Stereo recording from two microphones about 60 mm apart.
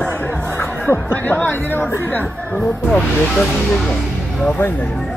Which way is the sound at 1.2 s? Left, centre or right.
Left.